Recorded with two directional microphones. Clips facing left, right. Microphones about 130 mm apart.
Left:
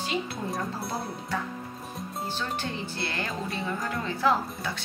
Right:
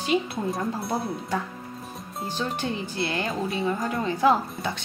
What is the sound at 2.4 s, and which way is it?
Speech, 20° right (ahead or behind).